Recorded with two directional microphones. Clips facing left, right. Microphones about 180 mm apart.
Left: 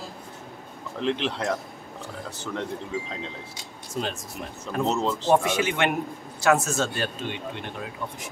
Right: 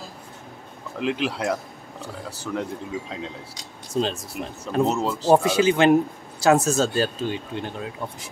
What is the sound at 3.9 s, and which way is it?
Speech, 30° right (ahead or behind).